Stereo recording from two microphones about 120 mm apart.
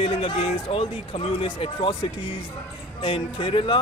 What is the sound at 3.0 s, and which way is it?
Speech, 50° left (ahead or behind).